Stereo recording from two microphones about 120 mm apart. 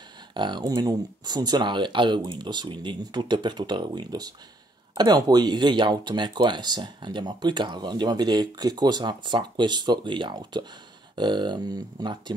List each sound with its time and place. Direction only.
0.3 s speech: 40° right (ahead or behind)